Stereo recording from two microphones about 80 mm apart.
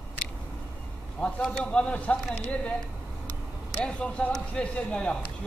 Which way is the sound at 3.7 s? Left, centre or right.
Centre.